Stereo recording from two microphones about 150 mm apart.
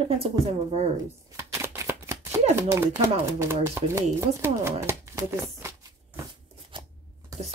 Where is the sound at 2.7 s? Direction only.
20° right (ahead or behind).